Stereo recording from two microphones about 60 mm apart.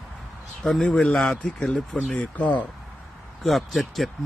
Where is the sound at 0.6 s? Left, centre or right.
Centre.